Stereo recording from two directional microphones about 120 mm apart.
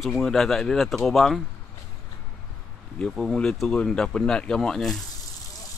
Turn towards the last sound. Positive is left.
turn(degrees=5)  # may be behind; listen again after turning